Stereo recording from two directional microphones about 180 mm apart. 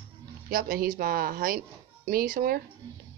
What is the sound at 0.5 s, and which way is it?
A woman's voice, 50° right (ahead or behind).